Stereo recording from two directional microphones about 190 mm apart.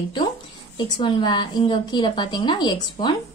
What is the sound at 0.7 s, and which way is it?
A woman's voice, 25° left (ahead or behind).